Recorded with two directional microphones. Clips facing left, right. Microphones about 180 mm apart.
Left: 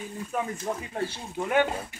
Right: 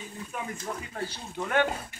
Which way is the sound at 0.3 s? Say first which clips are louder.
Left 7 dB; 40° left (ahead or behind).